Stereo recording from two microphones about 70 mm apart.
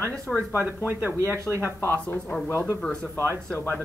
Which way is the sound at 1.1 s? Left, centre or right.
Right.